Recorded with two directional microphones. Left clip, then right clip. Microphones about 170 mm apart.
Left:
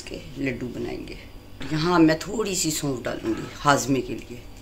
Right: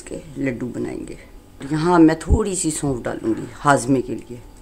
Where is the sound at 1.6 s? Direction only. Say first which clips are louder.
Right 5 dB; 70° right (ahead or behind).